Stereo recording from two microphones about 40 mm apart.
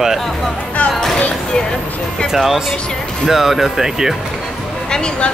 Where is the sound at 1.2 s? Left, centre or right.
Left.